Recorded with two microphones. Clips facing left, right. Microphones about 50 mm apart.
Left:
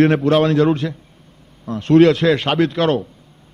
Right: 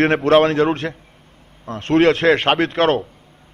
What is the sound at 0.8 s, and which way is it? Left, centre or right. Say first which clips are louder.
A man's voice: left 1 dB; right.